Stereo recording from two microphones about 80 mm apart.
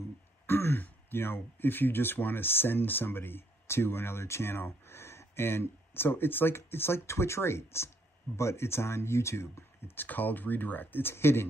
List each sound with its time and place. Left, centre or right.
0.5 s speech: left